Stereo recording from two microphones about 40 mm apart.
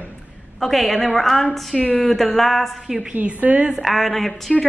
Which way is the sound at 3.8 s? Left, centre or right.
Centre.